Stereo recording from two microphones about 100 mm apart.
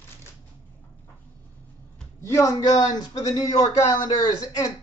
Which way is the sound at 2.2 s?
30° left (ahead or behind).